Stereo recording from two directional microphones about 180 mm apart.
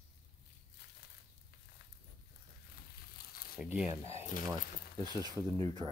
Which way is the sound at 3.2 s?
55° left (ahead or behind).